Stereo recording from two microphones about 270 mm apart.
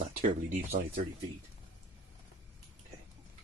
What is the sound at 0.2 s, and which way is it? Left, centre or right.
Speech, right.